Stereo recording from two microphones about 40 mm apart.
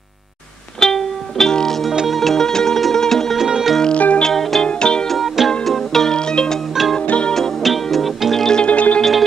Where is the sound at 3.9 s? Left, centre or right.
Left.